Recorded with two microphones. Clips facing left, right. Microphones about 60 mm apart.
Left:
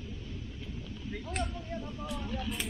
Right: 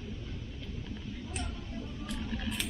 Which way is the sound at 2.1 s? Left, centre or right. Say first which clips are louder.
Even; centre.